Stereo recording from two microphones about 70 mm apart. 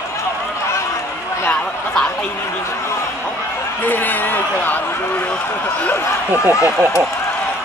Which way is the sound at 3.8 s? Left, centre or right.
Left.